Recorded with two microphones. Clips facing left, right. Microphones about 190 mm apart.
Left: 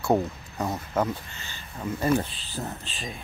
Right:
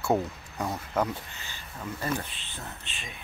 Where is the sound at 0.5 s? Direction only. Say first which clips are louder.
Left 2 dB; 5° left (ahead or behind).